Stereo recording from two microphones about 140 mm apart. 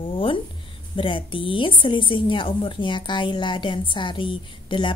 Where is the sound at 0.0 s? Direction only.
40° left (ahead or behind).